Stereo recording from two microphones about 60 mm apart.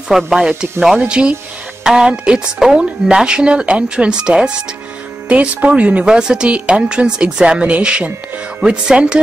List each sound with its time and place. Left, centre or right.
0.1 s speech: centre